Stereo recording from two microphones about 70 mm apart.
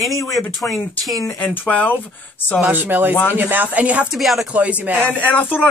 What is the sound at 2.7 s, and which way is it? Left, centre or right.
Speech, right.